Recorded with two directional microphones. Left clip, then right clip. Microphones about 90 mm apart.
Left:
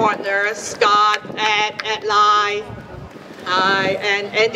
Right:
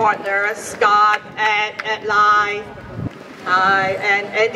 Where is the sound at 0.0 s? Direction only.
25° left (ahead or behind).